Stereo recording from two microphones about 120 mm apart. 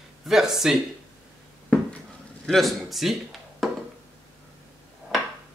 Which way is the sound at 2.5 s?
Centre (ahead or behind).